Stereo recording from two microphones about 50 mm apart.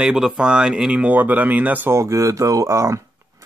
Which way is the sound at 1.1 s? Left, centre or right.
Right.